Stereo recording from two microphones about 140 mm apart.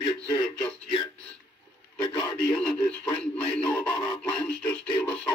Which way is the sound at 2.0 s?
30° left (ahead or behind).